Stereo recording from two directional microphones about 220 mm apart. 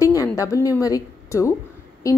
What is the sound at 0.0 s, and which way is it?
A woman's voice, 15° left (ahead or behind).